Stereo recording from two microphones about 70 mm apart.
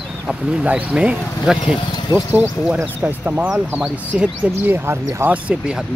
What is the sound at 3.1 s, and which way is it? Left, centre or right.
Speech, right.